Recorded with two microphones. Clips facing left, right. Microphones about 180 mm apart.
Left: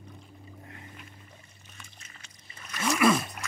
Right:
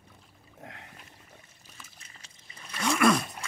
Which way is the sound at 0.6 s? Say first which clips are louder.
Right 5 dB; 90° right.